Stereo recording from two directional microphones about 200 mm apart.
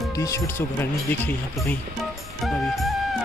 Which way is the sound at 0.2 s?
15° left (ahead or behind).